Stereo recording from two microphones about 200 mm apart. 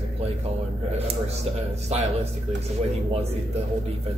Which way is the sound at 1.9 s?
35° right (ahead or behind).